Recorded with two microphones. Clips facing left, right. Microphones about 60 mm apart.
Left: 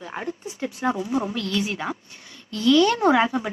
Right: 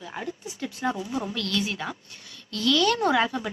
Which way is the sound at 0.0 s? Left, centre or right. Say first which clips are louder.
Left 3 dB; left.